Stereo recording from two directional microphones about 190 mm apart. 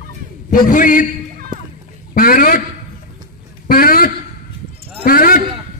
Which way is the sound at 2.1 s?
45° left (ahead or behind).